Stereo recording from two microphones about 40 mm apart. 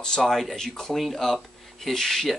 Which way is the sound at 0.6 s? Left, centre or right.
Centre.